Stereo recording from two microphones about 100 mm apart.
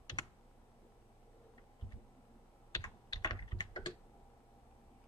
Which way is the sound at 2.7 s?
40° left (ahead or behind).